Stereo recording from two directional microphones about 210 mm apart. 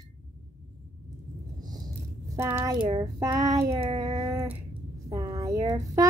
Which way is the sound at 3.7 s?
20° right (ahead or behind).